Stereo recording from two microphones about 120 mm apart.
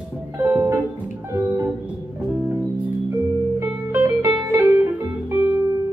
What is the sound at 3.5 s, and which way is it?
Music, 25° right (ahead or behind).